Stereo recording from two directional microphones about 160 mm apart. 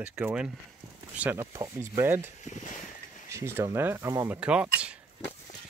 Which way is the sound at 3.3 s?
15° right (ahead or behind).